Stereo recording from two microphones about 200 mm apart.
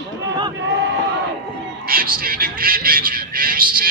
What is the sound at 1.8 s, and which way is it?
A man's voice, 50° right (ahead or behind).